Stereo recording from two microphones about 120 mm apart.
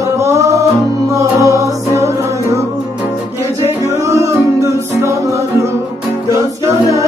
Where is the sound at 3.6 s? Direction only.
60° left (ahead or behind).